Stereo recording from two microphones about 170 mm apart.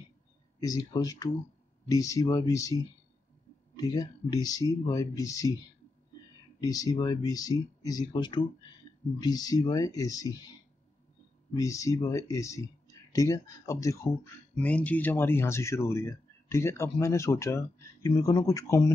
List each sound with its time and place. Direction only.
0.6 s speech: 20° left (ahead or behind)
6.6 s speech: 20° left (ahead or behind)
11.5 s speech: 20° left (ahead or behind)
14.6 s speech: 10° left (ahead or behind)